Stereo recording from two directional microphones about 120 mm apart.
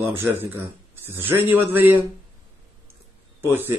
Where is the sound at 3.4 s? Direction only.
20° right (ahead or behind).